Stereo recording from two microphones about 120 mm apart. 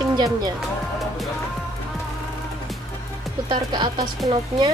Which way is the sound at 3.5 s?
40° right (ahead or behind).